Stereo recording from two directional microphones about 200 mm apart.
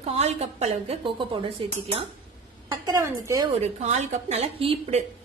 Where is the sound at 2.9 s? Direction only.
15° right (ahead or behind).